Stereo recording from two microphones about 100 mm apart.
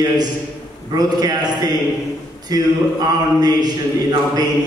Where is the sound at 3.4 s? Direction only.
45° right (ahead or behind).